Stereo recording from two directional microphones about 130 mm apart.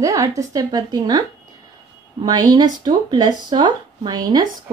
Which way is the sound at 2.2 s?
30° right (ahead or behind).